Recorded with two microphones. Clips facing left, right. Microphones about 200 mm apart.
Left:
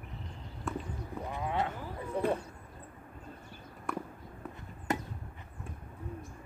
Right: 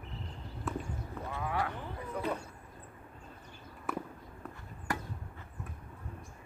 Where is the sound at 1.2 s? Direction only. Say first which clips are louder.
Left 2 dB; 20° left (ahead or behind).